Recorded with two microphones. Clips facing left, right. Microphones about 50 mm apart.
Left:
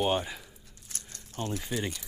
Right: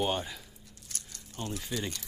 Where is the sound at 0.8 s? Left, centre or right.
Left.